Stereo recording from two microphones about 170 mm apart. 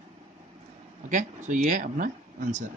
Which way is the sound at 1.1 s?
45° right (ahead or behind).